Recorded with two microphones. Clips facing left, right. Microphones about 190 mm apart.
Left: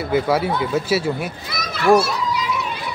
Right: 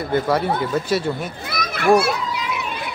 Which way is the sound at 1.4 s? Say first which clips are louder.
Right 2 dB; 55° right (ahead or behind).